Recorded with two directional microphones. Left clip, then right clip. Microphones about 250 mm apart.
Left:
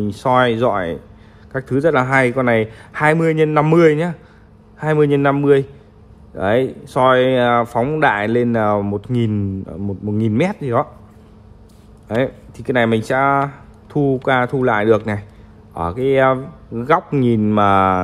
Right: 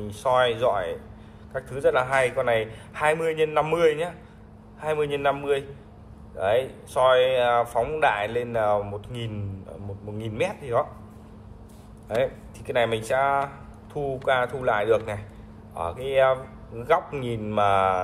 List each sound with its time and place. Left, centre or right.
0.1 s speech: left
12.2 s speech: left